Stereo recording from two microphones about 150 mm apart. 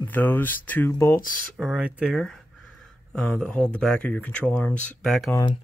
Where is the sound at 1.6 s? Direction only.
5° left (ahead or behind).